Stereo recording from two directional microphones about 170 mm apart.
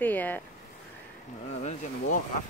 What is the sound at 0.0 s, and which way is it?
Speech, 10° left (ahead or behind).